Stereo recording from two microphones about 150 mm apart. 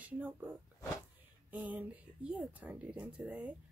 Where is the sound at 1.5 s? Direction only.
10° right (ahead or behind).